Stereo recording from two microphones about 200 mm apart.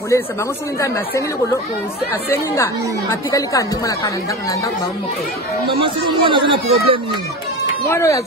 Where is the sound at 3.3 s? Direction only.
15° left (ahead or behind).